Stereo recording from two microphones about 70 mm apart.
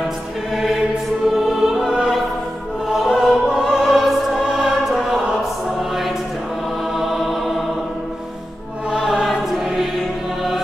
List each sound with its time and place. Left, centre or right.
1.3 s music: centre
7.0 s music: centre
9.0 s choir: centre